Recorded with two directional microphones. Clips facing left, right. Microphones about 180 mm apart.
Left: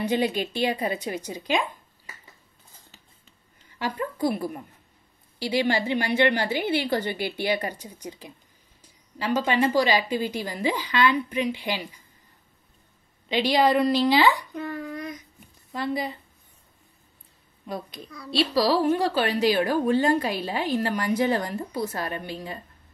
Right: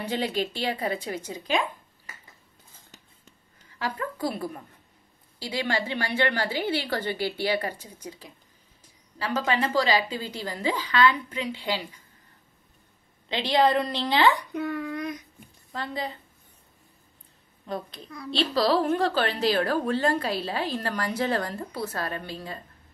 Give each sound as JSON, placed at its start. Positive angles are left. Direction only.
{"t": 0.1, "sound": "a woman's voice", "side_deg": 15}
{"t": 3.7, "sound": "a woman's voice", "side_deg": 20}
{"t": 5.9, "sound": "a woman's voice", "side_deg": 20}
{"t": 13.3, "sound": "a woman's voice", "side_deg": 10}
{"t": 14.7, "sound": "child singing", "side_deg": -70}
{"t": 15.7, "sound": "a woman's voice", "side_deg": 10}
{"t": 17.6, "sound": "a woman's voice", "side_deg": 10}